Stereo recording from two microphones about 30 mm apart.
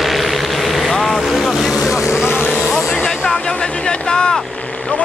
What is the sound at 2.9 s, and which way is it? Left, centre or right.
Music, centre.